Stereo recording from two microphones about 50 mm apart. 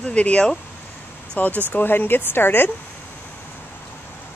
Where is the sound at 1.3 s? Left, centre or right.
Left.